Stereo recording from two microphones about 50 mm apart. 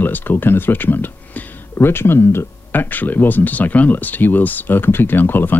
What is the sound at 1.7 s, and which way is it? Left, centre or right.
Speech, left.